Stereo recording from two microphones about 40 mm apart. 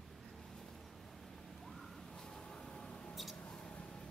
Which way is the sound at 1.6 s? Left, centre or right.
Centre.